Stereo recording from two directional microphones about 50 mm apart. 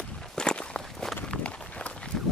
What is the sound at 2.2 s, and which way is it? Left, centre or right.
Run, centre.